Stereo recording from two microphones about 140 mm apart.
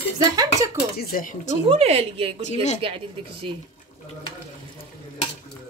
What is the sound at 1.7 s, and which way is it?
Speech, 50° right (ahead or behind).